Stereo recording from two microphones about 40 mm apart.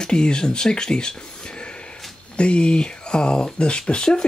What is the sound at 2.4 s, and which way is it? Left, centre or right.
Speech, left.